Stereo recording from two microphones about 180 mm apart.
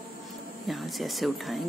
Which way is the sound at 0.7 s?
Centre (ahead or behind).